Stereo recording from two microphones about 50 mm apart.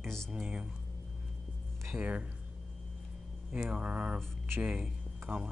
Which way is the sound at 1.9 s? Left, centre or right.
Right.